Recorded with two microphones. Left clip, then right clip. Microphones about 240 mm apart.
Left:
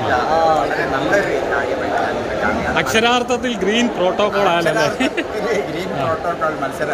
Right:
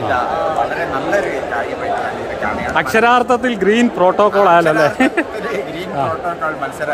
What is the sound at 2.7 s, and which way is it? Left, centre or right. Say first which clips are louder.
A man's voice: right 5 dB; centre.